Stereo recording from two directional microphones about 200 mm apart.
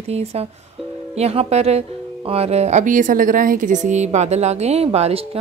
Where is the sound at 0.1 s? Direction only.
30° right (ahead or behind).